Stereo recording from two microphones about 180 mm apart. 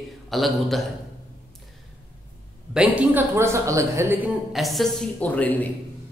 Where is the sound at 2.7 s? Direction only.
5° right (ahead or behind).